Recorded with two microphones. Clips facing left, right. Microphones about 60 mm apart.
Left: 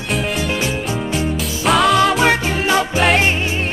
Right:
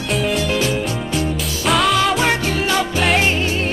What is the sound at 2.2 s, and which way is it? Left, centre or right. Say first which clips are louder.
Music: left 2 dB; left.